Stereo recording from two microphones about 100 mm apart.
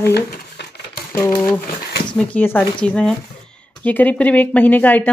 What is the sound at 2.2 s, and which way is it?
Speech, 15° left (ahead or behind).